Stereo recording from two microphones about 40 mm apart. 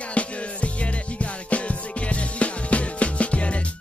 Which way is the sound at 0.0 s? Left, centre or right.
Left.